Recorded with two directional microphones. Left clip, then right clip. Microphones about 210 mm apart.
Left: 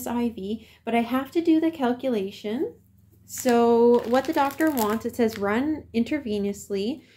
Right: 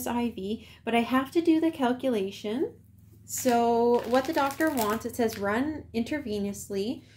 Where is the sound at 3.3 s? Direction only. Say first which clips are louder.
Left 4 dB; 20° left (ahead or behind).